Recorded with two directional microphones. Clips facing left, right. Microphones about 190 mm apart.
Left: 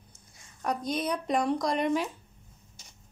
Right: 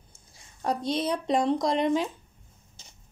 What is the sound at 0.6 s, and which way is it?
Speech, 30° right (ahead or behind).